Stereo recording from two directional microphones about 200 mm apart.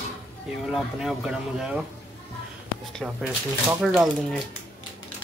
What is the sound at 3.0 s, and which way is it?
Speech, centre (ahead or behind).